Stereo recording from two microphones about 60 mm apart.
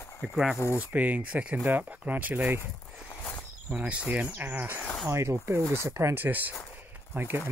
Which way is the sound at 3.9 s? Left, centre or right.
Centre.